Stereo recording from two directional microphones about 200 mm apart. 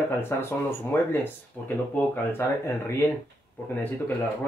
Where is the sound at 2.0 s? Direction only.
10° left (ahead or behind).